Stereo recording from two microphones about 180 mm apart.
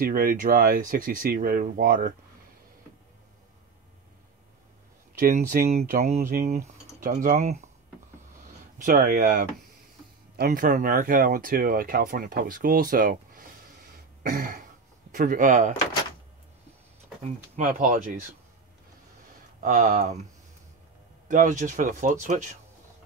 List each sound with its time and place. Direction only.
0.0 s speech: 55° right (ahead or behind)
5.2 s speech: 50° right (ahead or behind)
5.7 s a sound: 35° right (ahead or behind)
6.4 s cutlery: 40° right (ahead or behind)
7.1 s speech: 50° right (ahead or behind)
8.7 s speech: 50° right (ahead or behind)
17.6 s speech: 45° right (ahead or behind)
19.6 s speech: 45° right (ahead or behind)
21.3 s speech: 45° right (ahead or behind)